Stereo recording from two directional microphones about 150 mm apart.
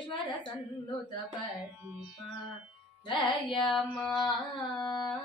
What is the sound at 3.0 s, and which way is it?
Humming, 30° left (ahead or behind).